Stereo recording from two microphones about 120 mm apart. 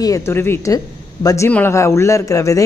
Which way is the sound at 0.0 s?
25° left (ahead or behind).